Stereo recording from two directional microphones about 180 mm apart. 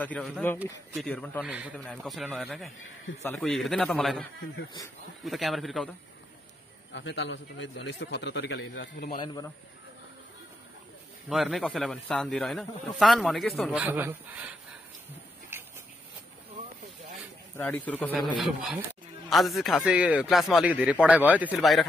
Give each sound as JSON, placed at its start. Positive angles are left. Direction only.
{"t": 0.0, "sound": "speech", "side_deg": 5}
{"t": 1.4, "sound": "speech", "side_deg": -5}
{"t": 1.8, "sound": "a man's voice", "side_deg": 5}
{"t": 6.9, "sound": "a man's voice", "side_deg": 90}
{"t": 9.2, "sound": "a man's voice", "side_deg": 25}
{"t": 11.2, "sound": "a man's voice", "side_deg": 0}
{"t": 13.8, "sound": "speech", "side_deg": -10}
{"t": 17.6, "sound": "speech", "side_deg": 10}
{"t": 18.1, "sound": "a man's voice", "side_deg": 0}